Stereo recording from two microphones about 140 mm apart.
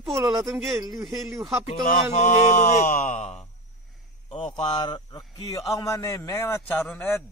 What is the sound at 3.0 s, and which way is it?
Speech, 55° left (ahead or behind).